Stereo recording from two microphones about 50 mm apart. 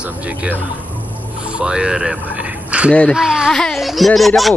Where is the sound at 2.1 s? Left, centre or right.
Right.